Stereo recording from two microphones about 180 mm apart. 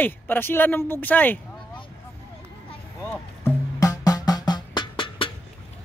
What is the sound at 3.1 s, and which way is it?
Music, 15° left (ahead or behind).